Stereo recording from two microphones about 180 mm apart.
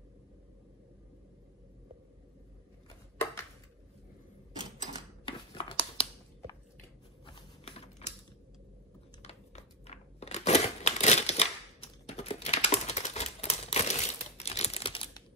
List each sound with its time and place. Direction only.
2.9 s a sound: 15° left (ahead or behind)
5.2 s scissors: 30° left (ahead or behind)
7.2 s typing: 30° left (ahead or behind)
9.2 s tearing: 35° left (ahead or behind)